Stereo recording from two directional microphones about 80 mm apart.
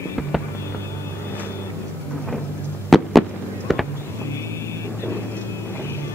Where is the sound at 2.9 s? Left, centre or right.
Centre.